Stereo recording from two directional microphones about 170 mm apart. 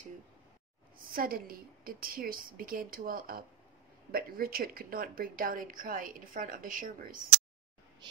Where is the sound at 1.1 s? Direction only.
60° right (ahead or behind).